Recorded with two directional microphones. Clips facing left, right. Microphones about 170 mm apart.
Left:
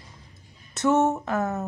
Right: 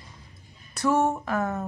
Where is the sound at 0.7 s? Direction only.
25° left (ahead or behind).